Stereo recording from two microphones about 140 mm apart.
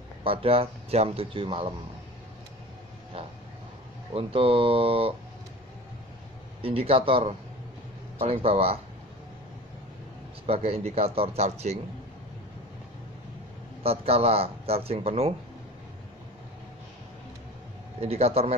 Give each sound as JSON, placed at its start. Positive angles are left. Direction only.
{"t": 0.2, "sound": "a man's voice", "side_deg": -40}
{"t": 4.1, "sound": "a man's voice", "side_deg": -40}
{"t": 6.6, "sound": "a man's voice", "side_deg": -40}
{"t": 10.4, "sound": "speech", "side_deg": -45}
{"t": 13.8, "sound": "speech", "side_deg": -45}
{"t": 18.0, "sound": "speech", "side_deg": -45}